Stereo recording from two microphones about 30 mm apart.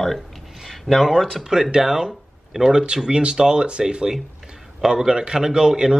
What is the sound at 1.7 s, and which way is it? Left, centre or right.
Speech, right.